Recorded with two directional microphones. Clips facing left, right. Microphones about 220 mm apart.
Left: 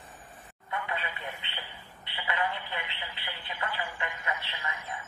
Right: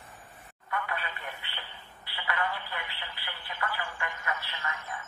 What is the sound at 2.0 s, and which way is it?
Telephone, 20° left (ahead or behind).